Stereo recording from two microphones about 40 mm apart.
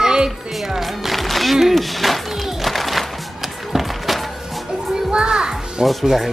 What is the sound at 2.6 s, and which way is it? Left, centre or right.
Music, centre.